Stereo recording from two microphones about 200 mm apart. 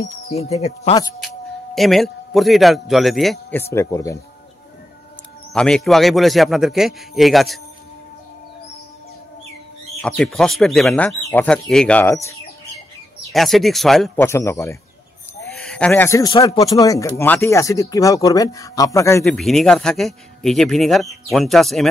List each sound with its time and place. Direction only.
0.3 s speech: 30° left (ahead or behind)
1.8 s speech: centre (ahead or behind)
5.5 s speech: 5° left (ahead or behind)
10.0 s speech: 5° left (ahead or behind)
13.3 s speech: centre (ahead or behind)
14.2 s speech: 15° left (ahead or behind)
15.5 s speech: centre (ahead or behind)
19.2 s speech: centre (ahead or behind)